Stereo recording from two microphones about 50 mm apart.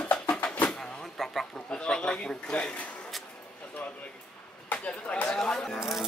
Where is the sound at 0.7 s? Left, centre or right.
Centre.